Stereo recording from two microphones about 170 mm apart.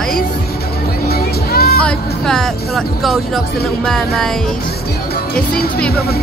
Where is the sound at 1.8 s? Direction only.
5° left (ahead or behind).